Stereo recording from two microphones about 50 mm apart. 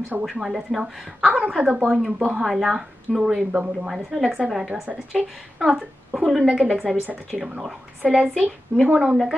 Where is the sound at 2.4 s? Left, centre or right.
Centre.